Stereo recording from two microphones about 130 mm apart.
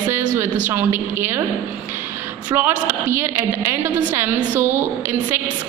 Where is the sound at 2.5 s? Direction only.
15° right (ahead or behind).